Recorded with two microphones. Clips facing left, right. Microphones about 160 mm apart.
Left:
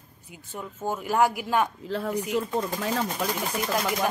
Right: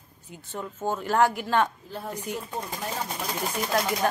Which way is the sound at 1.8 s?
85° left.